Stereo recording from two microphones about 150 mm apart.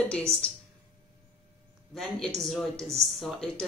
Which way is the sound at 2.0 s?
Centre (ahead or behind).